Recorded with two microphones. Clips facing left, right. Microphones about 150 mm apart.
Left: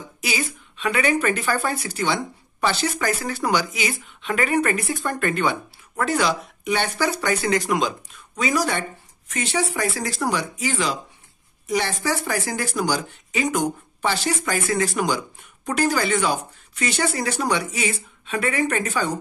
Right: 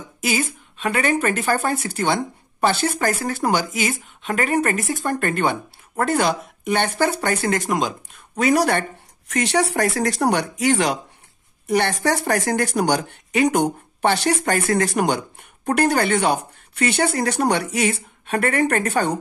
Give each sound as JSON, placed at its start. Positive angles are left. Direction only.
{"t": 0.2, "sound": "speech", "side_deg": -50}